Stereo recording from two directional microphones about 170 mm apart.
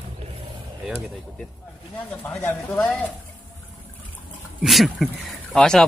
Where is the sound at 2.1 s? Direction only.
5° left (ahead or behind).